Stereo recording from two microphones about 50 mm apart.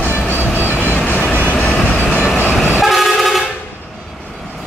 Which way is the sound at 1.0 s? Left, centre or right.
Left.